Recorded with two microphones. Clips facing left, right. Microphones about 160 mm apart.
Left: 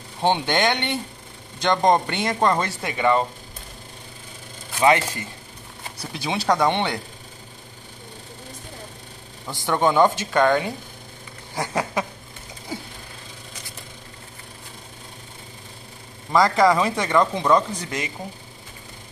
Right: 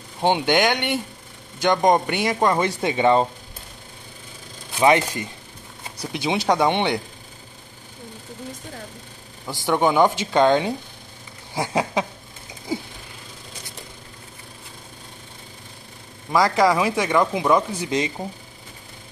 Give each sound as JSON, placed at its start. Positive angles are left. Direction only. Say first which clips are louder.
{"t": 0.2, "sound": "speech", "louder": "right 2 dB", "side_deg": -15}
{"t": 4.7, "sound": "speech", "louder": "right 1 dB", "side_deg": -20}
{"t": 9.7, "sound": "speech", "louder": "even", "side_deg": -10}
{"t": 11.5, "sound": "speech", "louder": "right 2 dB", "side_deg": -10}
{"t": 12.7, "sound": "a sound", "louder": "right 6 dB", "side_deg": -10}
{"t": 16.3, "sound": "speech", "louder": "left 1 dB", "side_deg": -5}